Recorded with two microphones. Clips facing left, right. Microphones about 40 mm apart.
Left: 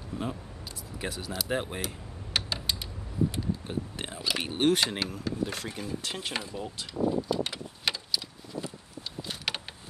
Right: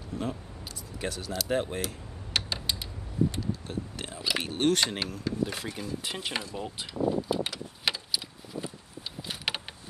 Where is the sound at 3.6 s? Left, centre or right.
Left; by 7.3 s centre.